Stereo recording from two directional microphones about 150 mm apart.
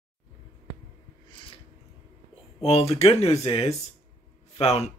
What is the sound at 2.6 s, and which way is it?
Speech, 45° left (ahead or behind).